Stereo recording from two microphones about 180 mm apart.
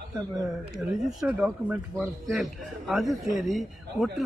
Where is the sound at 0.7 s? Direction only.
Centre (ahead or behind).